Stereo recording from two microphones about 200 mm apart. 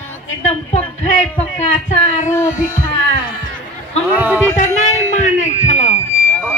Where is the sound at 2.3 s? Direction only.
10° left (ahead or behind).